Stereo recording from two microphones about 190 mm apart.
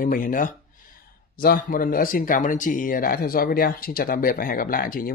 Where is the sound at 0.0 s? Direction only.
45° left (ahead or behind).